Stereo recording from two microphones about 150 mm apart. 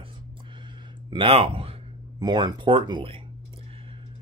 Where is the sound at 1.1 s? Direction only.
40° right (ahead or behind).